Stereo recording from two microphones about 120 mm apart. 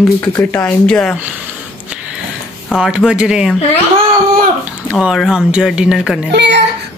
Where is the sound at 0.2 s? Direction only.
25° left (ahead or behind).